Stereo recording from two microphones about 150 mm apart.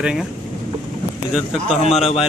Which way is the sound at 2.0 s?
45° left (ahead or behind).